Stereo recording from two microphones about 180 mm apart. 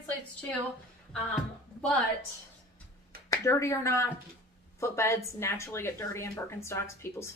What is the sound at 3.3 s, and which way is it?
Speech, 15° left (ahead or behind).